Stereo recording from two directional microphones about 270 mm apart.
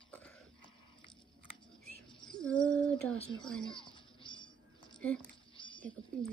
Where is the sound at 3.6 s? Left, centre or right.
Centre.